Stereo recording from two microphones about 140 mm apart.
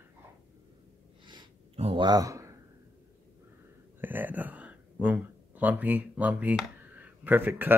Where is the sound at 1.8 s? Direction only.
45° right (ahead or behind).